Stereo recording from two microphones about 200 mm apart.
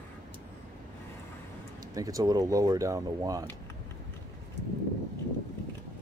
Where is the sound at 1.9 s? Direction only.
15° right (ahead or behind).